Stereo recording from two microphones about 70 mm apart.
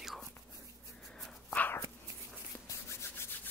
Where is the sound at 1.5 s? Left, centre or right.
Left.